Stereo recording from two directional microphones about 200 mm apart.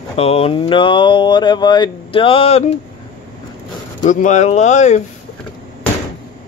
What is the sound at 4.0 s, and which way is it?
Speech, 40° left (ahead or behind).